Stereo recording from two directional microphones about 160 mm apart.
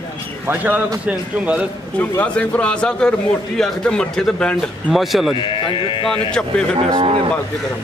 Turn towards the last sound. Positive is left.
turn(degrees=-35)  # may be behind; listen again after turning